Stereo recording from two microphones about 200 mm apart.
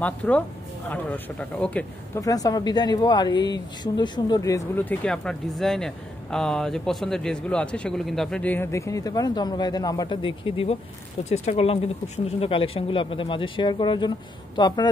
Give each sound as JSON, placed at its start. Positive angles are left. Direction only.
{"t": 0.0, "sound": "speech", "side_deg": 5}